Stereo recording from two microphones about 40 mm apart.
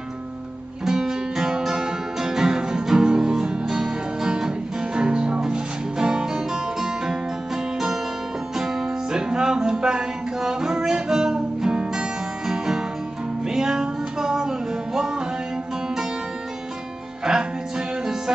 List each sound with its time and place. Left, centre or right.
0.8 s music: centre
17.2 s music: centre